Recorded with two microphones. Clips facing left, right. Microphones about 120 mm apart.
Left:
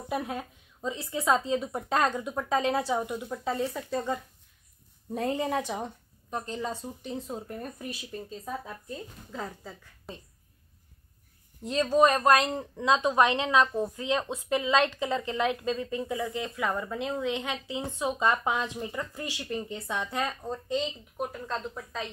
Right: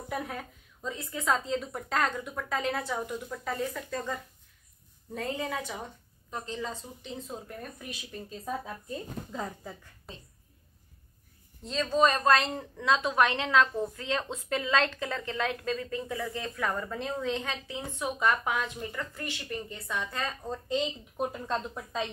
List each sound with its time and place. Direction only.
0.1 s a woman's voice: 20° left (ahead or behind)
6.3 s a woman's voice: 15° left (ahead or behind)
9.3 s a woman's voice: 15° right (ahead or behind)
11.6 s a woman's voice: 15° left (ahead or behind)
16.0 s a woman's voice: 5° left (ahead or behind)
20.7 s a woman's voice: 15° right (ahead or behind)